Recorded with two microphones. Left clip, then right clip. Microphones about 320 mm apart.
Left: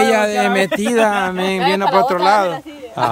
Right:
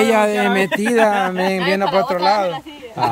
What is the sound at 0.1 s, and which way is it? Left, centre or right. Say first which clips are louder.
Speech: left 1 dB; centre.